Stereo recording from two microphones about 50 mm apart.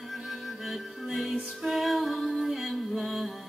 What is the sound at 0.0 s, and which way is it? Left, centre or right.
Music, centre.